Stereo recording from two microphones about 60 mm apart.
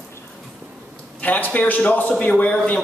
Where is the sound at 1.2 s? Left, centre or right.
Left.